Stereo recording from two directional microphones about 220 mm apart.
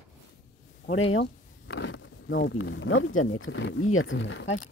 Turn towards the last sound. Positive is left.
turn(degrees=60)  # may be behind; listen again after turning